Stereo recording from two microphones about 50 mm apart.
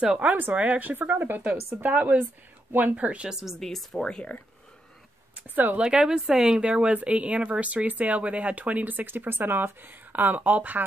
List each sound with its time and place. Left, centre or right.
0.0 s a woman's voice: right
1.8 s speech: right
3.3 s a woman's voice: centre
3.5 s speech: centre
5.3 s speech: right
5.8 s a woman's voice: centre; by 10.9 s right